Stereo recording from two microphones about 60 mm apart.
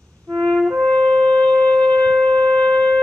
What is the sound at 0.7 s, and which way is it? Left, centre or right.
Shofar, centre.